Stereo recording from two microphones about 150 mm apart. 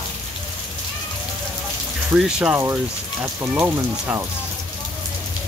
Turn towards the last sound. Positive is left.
turn(degrees=-15)  # may be behind; listen again after turning